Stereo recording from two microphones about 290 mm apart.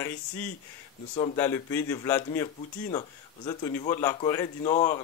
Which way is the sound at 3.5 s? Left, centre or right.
Centre.